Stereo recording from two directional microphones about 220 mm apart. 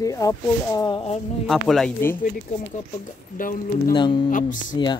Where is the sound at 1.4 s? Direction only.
Centre (ahead or behind).